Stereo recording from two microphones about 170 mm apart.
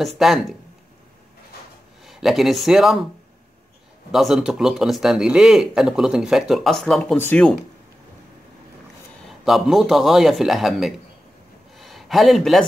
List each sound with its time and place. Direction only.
0.0 s a man's voice: centre (ahead or behind)
2.0 s speech: centre (ahead or behind)
4.1 s a man's voice: centre (ahead or behind)
9.4 s a man's voice: centre (ahead or behind)
11.8 s a sound: centre (ahead or behind)